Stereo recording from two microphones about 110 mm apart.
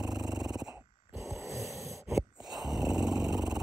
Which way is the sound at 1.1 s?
25° right (ahead or behind).